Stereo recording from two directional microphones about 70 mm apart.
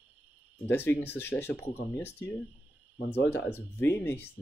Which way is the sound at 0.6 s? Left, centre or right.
Left.